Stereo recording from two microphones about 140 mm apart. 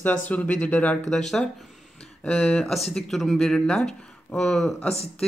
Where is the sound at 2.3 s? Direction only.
5° left (ahead or behind).